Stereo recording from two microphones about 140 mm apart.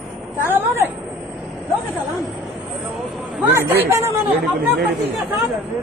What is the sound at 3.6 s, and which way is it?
Speech, 15° right (ahead or behind).